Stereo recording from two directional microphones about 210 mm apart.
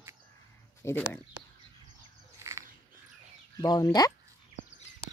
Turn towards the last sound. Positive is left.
turn(degrees=20)  # may be behind; listen again after turning